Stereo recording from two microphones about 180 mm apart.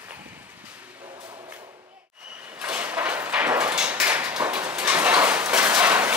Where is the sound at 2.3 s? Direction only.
10° right (ahead or behind).